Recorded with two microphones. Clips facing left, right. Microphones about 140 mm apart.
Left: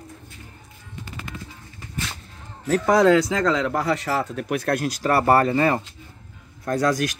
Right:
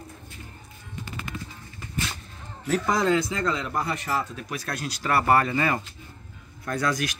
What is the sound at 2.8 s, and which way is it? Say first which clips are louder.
Speech: left 8 dB; 70° left (ahead or behind).